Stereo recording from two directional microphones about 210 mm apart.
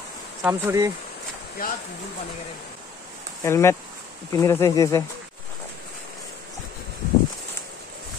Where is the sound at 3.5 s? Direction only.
15° left (ahead or behind).